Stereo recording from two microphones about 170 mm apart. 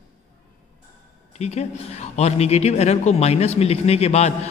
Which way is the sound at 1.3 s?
40° left (ahead or behind).